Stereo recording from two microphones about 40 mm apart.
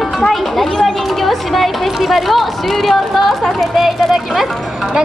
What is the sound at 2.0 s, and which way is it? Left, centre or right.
Speech, centre.